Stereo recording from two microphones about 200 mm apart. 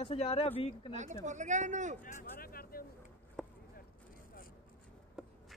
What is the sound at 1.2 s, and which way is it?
Speech, 35° right (ahead or behind).